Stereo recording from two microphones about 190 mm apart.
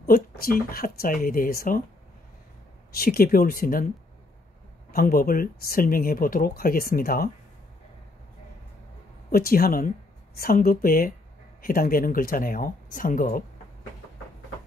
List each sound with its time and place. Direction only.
0.0 s speech: 50° left (ahead or behind)
3.0 s speech: 50° left (ahead or behind)
4.9 s speech: 50° left (ahead or behind)
9.3 s speech: 50° left (ahead or behind)